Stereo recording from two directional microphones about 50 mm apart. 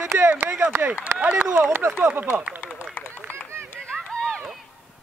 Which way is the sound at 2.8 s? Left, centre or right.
Right.